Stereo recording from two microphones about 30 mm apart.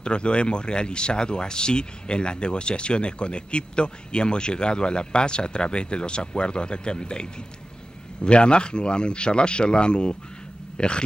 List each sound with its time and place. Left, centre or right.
0.0 s speech: left